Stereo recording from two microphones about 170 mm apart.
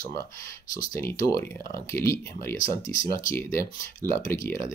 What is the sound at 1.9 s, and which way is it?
Speech, 15° left (ahead or behind).